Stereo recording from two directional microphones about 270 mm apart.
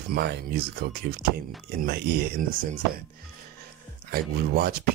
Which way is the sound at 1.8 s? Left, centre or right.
Right.